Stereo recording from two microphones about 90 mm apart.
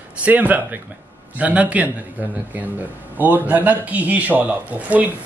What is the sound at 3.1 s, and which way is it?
Speech, 20° right (ahead or behind).